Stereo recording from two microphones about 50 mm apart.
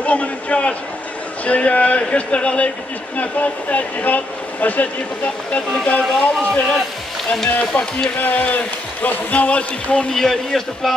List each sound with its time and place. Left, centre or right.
0.0 s a sound: left
1.4 s speech: left
6.1 s speech: left
10.1 s speech: centre